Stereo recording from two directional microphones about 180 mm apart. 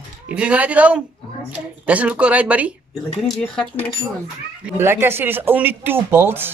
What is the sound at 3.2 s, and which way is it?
Speech, 5° left (ahead or behind).